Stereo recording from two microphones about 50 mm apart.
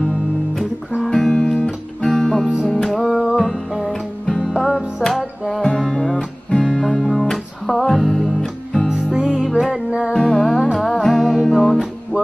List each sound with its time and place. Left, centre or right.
1.0 s music: centre
8.9 s music: centre
10.1 s music: centre